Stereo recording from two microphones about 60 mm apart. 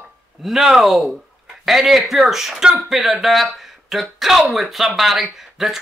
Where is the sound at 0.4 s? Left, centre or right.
Centre.